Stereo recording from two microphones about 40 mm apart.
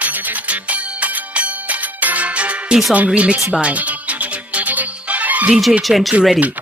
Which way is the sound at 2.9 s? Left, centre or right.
Right.